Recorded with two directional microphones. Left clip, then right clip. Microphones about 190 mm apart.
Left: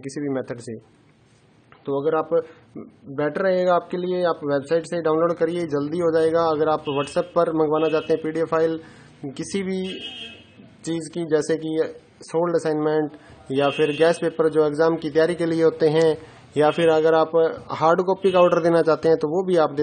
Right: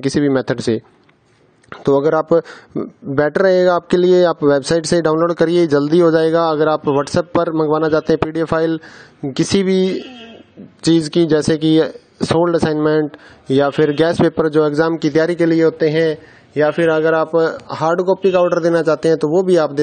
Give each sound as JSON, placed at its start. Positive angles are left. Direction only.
{"t": 0.0, "sound": "speech", "side_deg": -45}
{"t": 1.7, "sound": "speech", "side_deg": -70}